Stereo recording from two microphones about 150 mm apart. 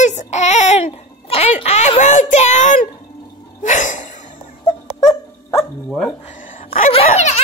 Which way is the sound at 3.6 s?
55° left (ahead or behind).